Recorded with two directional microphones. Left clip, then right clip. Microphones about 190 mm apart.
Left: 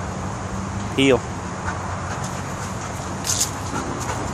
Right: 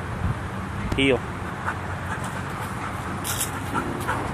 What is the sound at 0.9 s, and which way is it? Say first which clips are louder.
Speech: left 4 dB; 15° left (ahead or behind).